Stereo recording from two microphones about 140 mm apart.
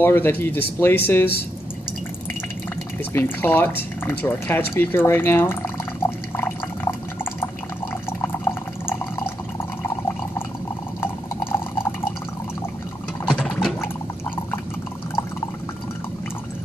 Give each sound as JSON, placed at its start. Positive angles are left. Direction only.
{"t": 0.0, "sound": "speech", "side_deg": 15}
{"t": 3.1, "sound": "speech", "side_deg": 15}
{"t": 6.0, "sound": "water", "side_deg": 15}
{"t": 11.0, "sound": "a sound", "side_deg": 15}
{"t": 13.3, "sound": "water", "side_deg": 5}